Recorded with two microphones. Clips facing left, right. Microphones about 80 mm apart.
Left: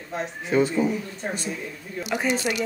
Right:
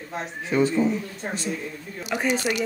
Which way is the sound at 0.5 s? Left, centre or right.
Centre.